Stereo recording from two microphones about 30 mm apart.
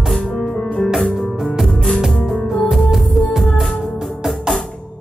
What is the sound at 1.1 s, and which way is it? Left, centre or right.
Music, centre.